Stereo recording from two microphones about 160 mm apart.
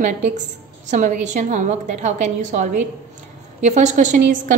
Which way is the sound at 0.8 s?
50° right (ahead or behind).